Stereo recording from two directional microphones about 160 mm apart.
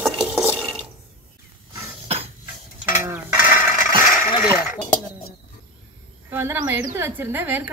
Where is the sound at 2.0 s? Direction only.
40° right (ahead or behind).